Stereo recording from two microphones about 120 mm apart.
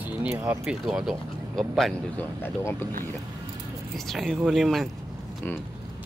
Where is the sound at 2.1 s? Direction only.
20° left (ahead or behind).